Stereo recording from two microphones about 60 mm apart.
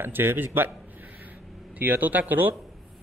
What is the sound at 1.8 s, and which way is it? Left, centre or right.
Speech, right.